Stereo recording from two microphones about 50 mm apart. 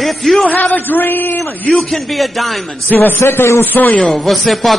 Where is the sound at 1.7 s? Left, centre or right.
Centre.